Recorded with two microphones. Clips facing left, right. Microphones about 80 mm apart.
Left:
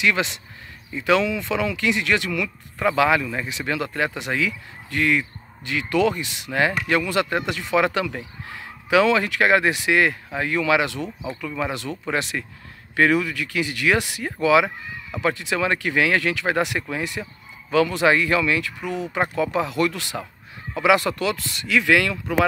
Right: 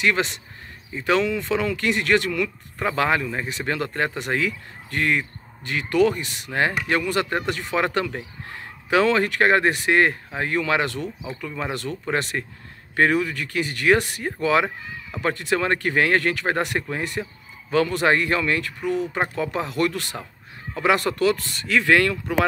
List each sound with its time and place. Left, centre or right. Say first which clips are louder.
0.0 s speech: even; right
18.8 s speech: right 3 dB; left
19.3 s speech: left 3 dB; right
21.2 s speech: right 4 dB; right